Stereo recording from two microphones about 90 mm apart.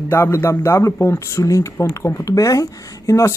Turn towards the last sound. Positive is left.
turn(degrees=35)  # may be behind; listen again after turning